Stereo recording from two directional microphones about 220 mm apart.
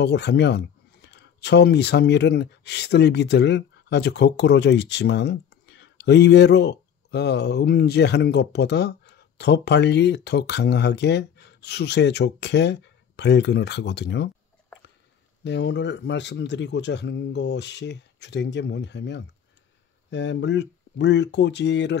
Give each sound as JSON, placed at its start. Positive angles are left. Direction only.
{"t": 0.0, "sound": "speech", "side_deg": 50}
{"t": 15.4, "sound": "speech", "side_deg": 50}